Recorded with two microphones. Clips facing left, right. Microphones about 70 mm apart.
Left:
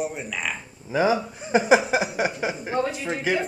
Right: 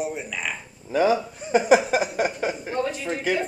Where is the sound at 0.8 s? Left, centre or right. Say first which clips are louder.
Right 1 dB; centre.